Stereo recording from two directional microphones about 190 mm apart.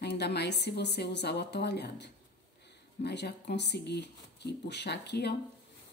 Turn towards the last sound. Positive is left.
turn(degrees=60)  # may be behind; listen again after turning